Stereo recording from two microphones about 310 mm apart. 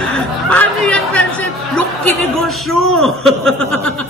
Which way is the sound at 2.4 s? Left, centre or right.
Centre.